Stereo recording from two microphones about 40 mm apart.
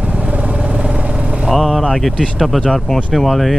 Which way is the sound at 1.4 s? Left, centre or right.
Centre.